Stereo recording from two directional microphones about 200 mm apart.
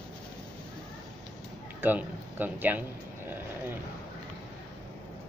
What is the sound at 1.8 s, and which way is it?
Speech, 10° right (ahead or behind).